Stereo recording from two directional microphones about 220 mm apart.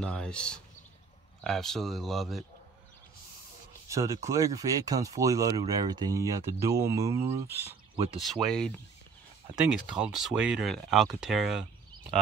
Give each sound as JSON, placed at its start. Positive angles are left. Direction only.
{"t": 0.0, "sound": "speech", "side_deg": 5}
{"t": 3.9, "sound": "speech", "side_deg": -15}
{"t": 8.2, "sound": "speech", "side_deg": 0}
{"t": 9.8, "sound": "speech", "side_deg": -5}